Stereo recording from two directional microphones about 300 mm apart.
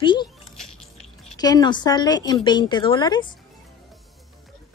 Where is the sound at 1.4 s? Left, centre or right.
Centre.